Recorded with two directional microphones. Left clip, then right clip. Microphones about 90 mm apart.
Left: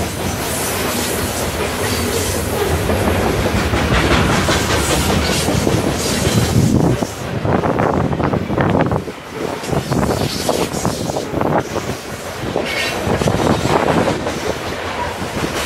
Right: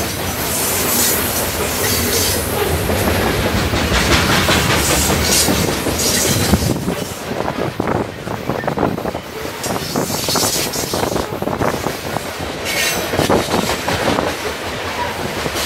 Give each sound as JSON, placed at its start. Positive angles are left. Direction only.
{"t": 2.9, "sound": "train", "side_deg": -40}
{"t": 5.2, "sound": "train", "side_deg": -45}